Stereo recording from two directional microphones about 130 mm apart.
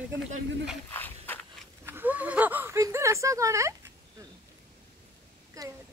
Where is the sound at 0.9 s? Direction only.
15° left (ahead or behind).